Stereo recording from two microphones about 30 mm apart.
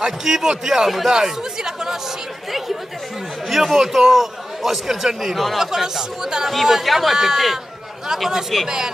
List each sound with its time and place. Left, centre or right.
0.2 s a man's voice: centre
1.1 s a man's voice: centre
3.4 s a man's voice: centre
8.6 s speech: centre